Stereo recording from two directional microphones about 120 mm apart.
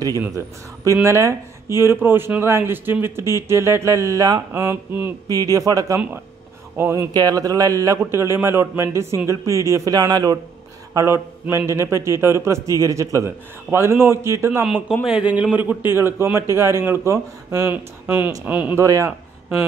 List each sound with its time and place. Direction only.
1.0 s speech: 20° right (ahead or behind)
5.3 s speech: 30° right (ahead or behind)
15.0 s a man's voice: 10° right (ahead or behind)
18.8 s speech: 25° right (ahead or behind)